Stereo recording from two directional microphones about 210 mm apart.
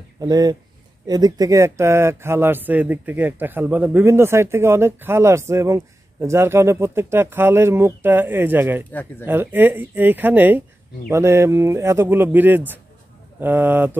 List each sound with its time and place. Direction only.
0.2 s speech: 20° right (ahead or behind)